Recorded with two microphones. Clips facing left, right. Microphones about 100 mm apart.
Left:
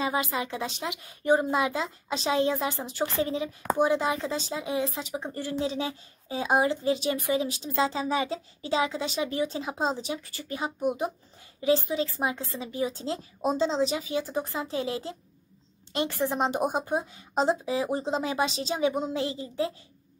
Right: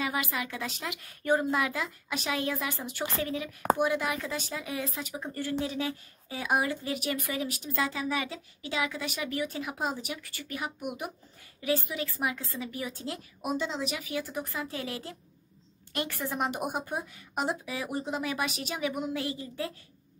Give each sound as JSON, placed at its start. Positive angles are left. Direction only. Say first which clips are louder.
{"t": 0.0, "sound": "speech", "louder": "left 4 dB", "side_deg": 25}